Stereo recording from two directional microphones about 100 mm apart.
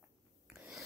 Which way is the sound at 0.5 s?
10° right (ahead or behind).